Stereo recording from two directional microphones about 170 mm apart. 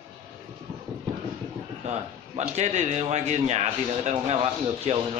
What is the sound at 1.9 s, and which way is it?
A man's voice, 40° right (ahead or behind).